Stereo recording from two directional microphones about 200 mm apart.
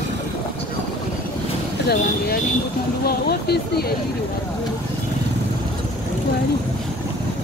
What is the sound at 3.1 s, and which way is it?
Vehicle, 50° left (ahead or behind).